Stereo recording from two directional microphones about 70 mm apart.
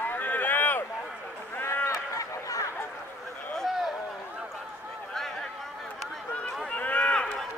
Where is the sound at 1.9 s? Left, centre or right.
Left.